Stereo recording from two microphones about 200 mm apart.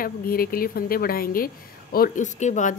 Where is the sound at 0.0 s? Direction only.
45° left (ahead or behind).